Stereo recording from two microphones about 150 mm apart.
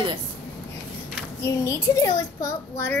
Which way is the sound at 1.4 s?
20° left (ahead or behind).